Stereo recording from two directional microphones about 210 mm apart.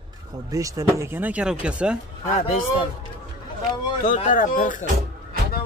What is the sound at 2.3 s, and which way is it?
Speech, 40° left (ahead or behind).